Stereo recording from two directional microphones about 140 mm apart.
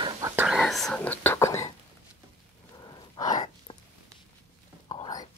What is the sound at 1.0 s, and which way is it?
Whispering, 15° left (ahead or behind).